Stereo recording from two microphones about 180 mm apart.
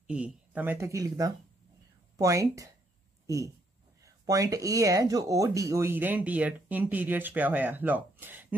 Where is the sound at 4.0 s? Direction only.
20° right (ahead or behind).